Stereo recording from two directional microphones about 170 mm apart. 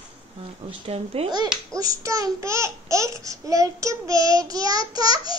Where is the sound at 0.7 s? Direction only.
35° right (ahead or behind).